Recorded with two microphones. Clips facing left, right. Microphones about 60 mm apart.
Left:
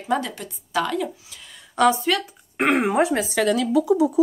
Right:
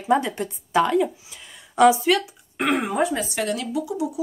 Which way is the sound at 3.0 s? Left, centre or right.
Left.